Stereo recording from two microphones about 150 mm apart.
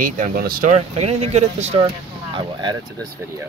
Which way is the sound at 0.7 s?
45° right (ahead or behind).